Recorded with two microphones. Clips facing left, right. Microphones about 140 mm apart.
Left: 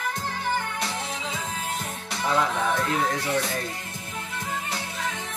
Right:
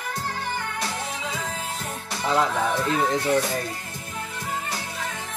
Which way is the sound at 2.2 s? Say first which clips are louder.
Right 2 dB; 25° right (ahead or behind).